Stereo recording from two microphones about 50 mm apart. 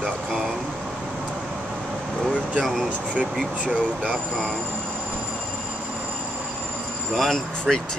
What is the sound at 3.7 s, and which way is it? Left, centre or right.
Speech, right.